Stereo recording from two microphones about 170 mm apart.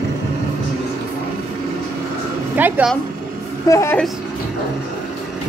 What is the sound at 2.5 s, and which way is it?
Speech, 10° right (ahead or behind).